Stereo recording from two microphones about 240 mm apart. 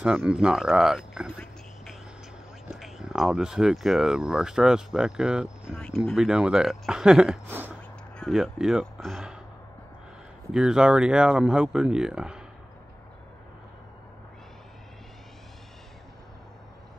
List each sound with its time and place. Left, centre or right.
0.0 s speech: centre
10.5 s speech: centre